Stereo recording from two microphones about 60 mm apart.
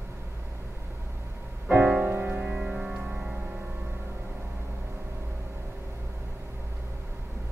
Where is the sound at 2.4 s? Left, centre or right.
Centre.